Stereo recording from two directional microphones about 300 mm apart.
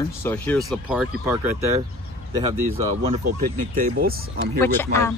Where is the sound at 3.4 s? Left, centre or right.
Right.